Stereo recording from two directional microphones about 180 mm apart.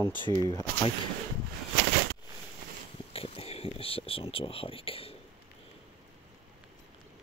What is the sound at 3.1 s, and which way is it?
Speech, 30° left (ahead or behind).